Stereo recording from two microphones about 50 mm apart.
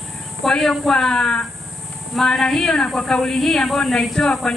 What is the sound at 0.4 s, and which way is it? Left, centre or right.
A woman's voice, centre.